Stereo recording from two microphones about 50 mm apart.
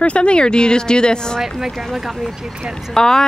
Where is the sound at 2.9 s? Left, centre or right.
Centre.